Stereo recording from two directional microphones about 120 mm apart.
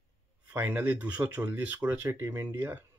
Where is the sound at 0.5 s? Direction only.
15° right (ahead or behind).